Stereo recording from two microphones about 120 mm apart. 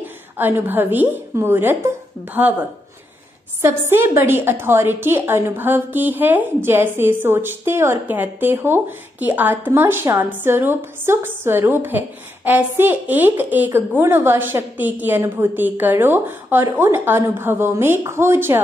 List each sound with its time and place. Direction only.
0.0 s a woman's voice: 15° right (ahead or behind)
3.6 s a woman's voice: 20° right (ahead or behind)